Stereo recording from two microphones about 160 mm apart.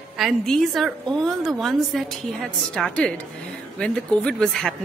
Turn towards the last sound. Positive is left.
turn(degrees=5)  # may be behind; listen again after turning